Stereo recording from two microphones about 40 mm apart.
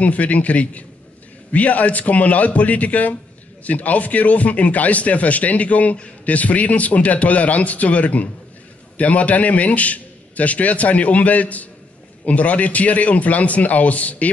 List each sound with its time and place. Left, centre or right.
0.0 s speech: left